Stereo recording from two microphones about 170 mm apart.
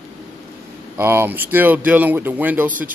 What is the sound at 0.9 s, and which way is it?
Speech, 15° right (ahead or behind).